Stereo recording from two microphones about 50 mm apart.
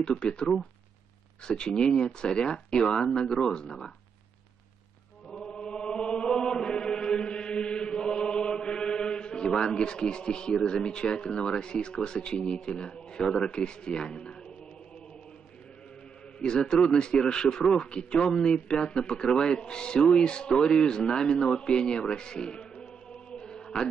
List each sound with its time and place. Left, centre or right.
0.0 s speech: centre
1.5 s speech: centre
5.3 s chant: centre
9.6 s speech: centre
16.5 s speech: centre
23.3 s chant: centre